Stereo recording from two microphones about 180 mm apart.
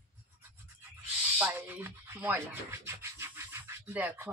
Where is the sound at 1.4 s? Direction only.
10° right (ahead or behind).